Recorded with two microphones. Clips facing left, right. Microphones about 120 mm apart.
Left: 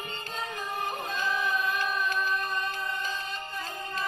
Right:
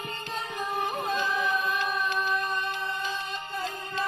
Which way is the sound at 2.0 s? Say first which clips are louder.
Right 1 dB; 40° left (ahead or behind).